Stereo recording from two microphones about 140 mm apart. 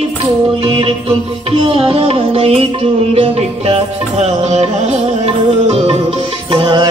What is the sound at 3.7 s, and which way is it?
Music, 50° right (ahead or behind).